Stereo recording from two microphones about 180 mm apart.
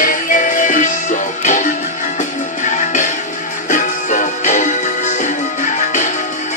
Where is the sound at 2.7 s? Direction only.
45° left (ahead or behind).